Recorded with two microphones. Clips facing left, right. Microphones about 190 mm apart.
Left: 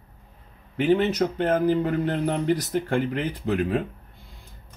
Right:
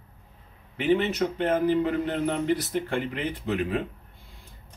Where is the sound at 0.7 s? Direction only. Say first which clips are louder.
Left 3 dB; 45° left (ahead or behind).